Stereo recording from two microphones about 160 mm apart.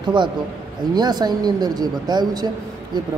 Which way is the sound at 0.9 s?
25° right (ahead or behind).